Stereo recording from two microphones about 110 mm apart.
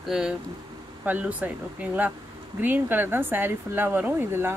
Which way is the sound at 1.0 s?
15° right (ahead or behind).